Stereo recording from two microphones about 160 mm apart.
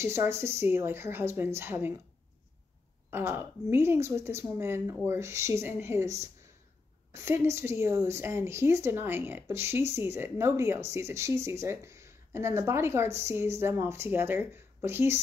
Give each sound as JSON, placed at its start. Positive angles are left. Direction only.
{"t": 0.0, "sound": "a woman's voice", "side_deg": -15}
{"t": 3.1, "sound": "a woman's voice", "side_deg": -15}